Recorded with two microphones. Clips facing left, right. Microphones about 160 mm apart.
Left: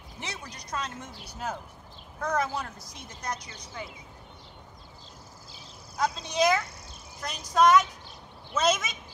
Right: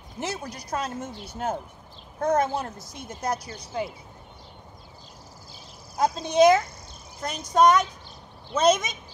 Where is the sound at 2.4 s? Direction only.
45° right (ahead or behind).